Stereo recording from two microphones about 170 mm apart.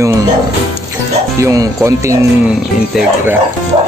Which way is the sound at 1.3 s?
20° right (ahead or behind).